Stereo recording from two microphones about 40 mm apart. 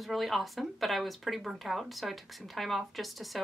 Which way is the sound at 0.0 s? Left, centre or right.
Centre.